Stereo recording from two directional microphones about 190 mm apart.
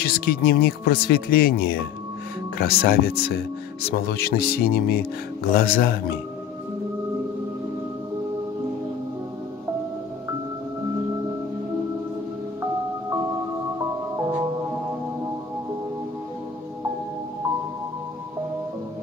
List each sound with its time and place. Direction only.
0.0 s speech: 55° left (ahead or behind)
14.1 s music: 15° right (ahead or behind)